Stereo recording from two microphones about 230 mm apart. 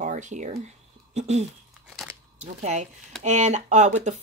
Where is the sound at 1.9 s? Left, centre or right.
Centre.